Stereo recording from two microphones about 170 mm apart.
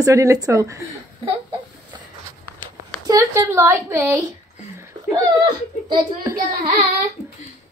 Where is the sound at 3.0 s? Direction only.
20° right (ahead or behind).